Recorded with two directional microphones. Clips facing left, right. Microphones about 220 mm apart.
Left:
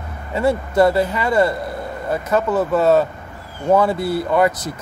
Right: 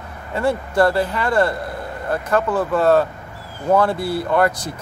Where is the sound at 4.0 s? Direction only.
20° left (ahead or behind).